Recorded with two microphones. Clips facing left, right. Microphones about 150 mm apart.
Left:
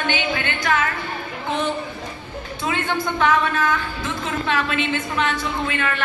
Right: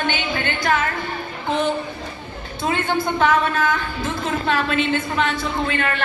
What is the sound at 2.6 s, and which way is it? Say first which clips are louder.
A woman's voice: right 3 dB; 40° right (ahead or behind).